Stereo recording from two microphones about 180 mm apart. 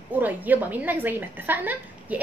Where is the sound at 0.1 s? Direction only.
10° right (ahead or behind).